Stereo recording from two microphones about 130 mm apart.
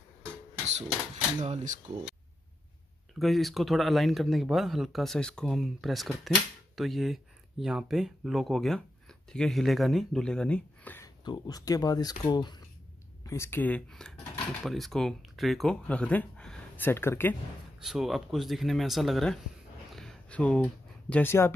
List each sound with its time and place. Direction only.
1.4 s speech: 65° right (ahead or behind)
3.2 s speech: centre (ahead or behind)
11.2 s speech: 35° left (ahead or behind)
13.2 s speech: 20° left (ahead or behind)
17.7 s speech: 5° right (ahead or behind)
20.0 s a sound: 5° left (ahead or behind)